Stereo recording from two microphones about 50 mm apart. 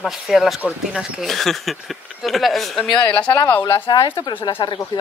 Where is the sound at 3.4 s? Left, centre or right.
Left.